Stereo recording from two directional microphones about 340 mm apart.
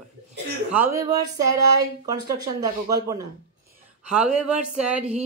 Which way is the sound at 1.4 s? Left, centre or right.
Right.